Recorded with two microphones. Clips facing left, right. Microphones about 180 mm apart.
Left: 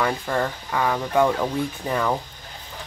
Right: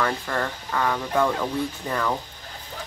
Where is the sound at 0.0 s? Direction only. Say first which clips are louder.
Left 2 dB; 10° left (ahead or behind).